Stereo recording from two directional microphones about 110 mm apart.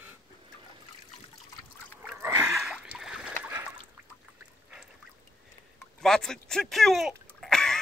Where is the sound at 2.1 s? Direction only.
25° right (ahead or behind).